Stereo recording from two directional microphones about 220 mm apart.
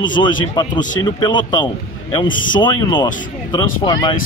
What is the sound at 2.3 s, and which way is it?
Speech, 40° left (ahead or behind).